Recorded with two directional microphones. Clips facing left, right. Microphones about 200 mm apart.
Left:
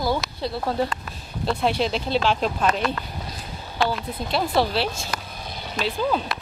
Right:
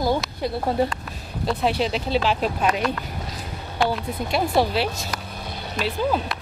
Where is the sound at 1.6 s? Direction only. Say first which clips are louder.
Even; 5° right (ahead or behind).